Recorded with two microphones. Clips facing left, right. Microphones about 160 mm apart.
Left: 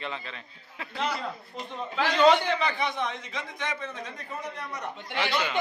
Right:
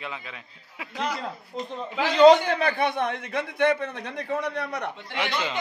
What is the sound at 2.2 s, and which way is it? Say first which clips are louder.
A man's voice: right 7 dB; 50° right (ahead or behind).